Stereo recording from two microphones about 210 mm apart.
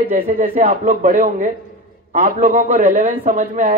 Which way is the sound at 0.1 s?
40° right (ahead or behind).